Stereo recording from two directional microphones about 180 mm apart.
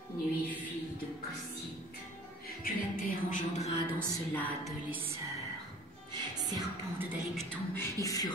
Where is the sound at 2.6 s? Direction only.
45° left (ahead or behind).